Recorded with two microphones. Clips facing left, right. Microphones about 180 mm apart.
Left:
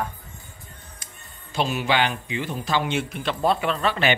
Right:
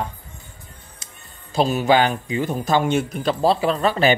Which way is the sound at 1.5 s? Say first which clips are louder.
Right 6 dB; 40° right (ahead or behind).